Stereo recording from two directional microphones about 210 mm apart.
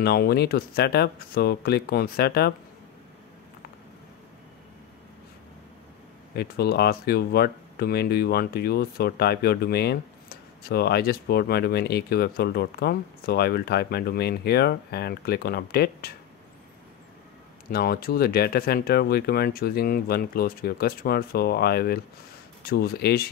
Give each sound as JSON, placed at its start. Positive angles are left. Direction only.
{"t": 0.0, "sound": "speech", "side_deg": 50}
{"t": 6.3, "sound": "speech", "side_deg": 50}
{"t": 17.6, "sound": "speech", "side_deg": 45}